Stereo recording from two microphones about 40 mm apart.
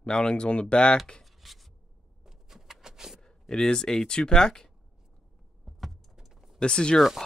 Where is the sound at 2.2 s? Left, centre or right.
Centre.